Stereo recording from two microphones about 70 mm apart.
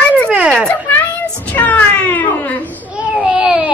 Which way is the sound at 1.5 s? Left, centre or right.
Left.